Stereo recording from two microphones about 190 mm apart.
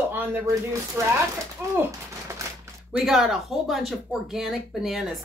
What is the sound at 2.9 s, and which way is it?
Speech, centre (ahead or behind).